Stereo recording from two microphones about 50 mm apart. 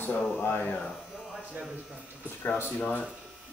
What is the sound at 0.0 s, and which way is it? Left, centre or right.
Speech, left.